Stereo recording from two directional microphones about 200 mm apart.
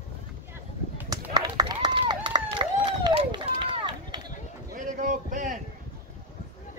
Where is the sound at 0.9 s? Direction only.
20° right (ahead or behind).